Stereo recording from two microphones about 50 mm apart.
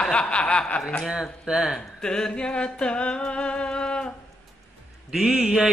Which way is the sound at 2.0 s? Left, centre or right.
Centre.